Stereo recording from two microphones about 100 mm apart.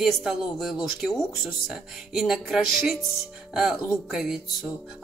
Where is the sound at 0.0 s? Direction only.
5° right (ahead or behind).